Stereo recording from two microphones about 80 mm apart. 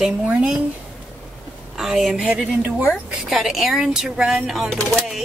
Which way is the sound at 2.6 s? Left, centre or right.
Centre.